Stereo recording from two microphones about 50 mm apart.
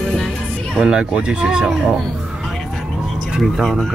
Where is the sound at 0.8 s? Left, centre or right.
Centre.